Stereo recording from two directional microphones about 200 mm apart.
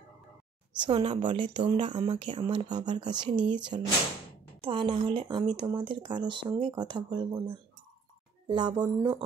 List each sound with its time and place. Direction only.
0.7 s a woman's voice: 25° right (ahead or behind)